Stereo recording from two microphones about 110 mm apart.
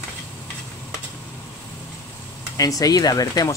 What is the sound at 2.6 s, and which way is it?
Speech, 35° left (ahead or behind).